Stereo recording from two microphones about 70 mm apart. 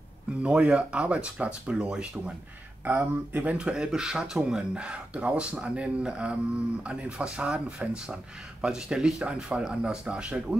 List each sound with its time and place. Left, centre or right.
0.4 s speech: centre
2.8 s speech: right